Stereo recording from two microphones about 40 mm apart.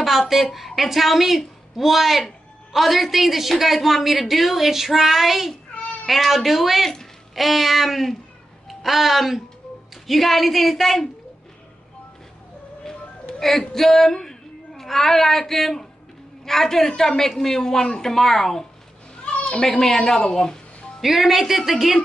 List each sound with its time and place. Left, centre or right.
0.3 s speech: centre
13.4 s speech: centre
19.3 s cat: left
19.7 s speech: centre
21.0 s speech: centre